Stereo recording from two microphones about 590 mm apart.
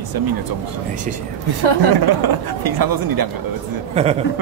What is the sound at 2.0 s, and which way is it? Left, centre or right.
Speech, right.